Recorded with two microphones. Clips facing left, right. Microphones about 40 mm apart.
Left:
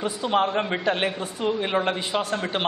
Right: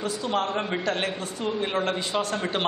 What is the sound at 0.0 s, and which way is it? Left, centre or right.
A man's voice, left.